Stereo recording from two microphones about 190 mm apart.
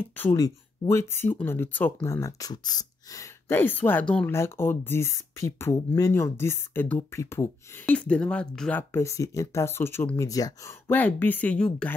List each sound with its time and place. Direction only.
0.0 s speech: 15° left (ahead or behind)